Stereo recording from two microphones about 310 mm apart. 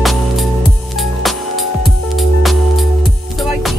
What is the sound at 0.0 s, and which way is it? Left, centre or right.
Music, centre.